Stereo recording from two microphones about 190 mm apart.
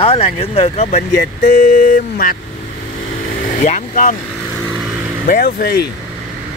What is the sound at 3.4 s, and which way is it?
Speech, 40° left (ahead or behind).